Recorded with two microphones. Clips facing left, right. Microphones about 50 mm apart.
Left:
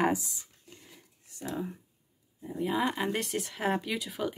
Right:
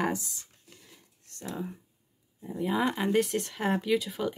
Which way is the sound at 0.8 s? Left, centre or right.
Centre.